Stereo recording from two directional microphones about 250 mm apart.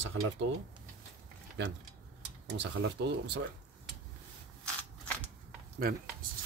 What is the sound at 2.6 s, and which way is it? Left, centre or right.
Speech, right.